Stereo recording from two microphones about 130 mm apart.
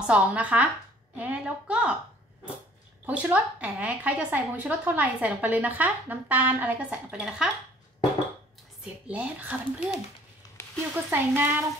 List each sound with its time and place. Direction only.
0.0 s a woman's voice: 10° right (ahead or behind)
3.1 s a woman's voice: 10° right (ahead or behind)
9.0 s a woman's voice: 10° right (ahead or behind)
11.1 s a woman's voice: 15° right (ahead or behind)